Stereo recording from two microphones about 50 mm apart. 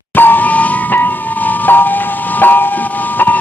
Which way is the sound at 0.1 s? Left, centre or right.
Left.